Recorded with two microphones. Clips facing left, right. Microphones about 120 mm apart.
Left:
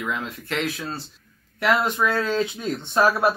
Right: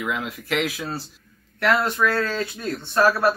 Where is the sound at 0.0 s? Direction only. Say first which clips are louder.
Right 1 dB; 5° right (ahead or behind).